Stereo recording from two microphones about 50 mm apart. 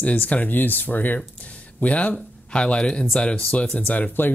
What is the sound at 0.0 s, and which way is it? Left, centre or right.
Speech, left.